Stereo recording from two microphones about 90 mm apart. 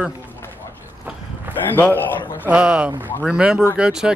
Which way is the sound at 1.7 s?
20° left (ahead or behind).